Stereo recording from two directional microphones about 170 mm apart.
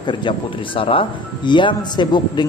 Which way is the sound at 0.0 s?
30° left (ahead or behind).